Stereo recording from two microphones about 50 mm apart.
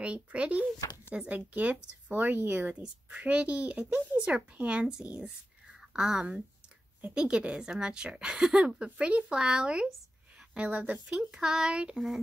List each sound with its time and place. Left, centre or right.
0.0 s a child's voice: right
2.7 s speech: centre
3.2 s a child's voice: right
10.7 s speech: right
11.2 s speech: centre